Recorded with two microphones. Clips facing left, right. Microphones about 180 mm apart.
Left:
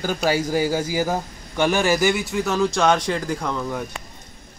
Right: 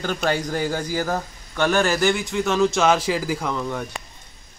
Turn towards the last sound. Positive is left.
turn(degrees=0)  # may be behind; listen again after turning